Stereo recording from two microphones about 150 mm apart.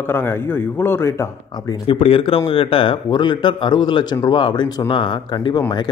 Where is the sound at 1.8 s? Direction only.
40° left (ahead or behind).